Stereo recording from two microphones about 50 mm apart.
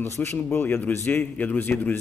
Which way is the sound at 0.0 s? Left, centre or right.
Left.